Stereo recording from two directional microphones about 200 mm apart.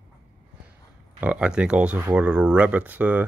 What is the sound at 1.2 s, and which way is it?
Speech, 5° right (ahead or behind).